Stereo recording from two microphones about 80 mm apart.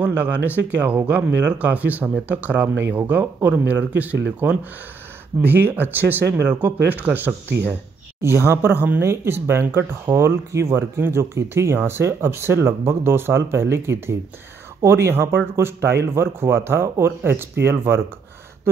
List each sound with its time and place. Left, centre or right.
0.0 s speech: centre
8.2 s speech: right